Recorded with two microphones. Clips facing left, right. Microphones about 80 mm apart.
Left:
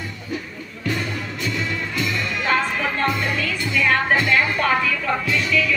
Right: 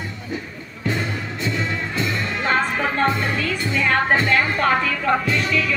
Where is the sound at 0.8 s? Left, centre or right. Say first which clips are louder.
Right 1 dB; right.